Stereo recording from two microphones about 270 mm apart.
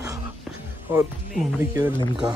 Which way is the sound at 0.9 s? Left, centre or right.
Centre.